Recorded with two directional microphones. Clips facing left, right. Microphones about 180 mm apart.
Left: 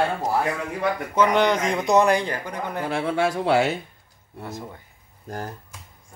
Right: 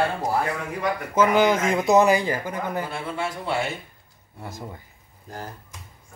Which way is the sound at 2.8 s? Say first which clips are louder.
Left 7 dB; 75° left (ahead or behind).